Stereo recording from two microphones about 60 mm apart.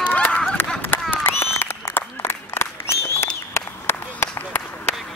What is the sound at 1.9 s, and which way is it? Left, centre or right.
Applause, left.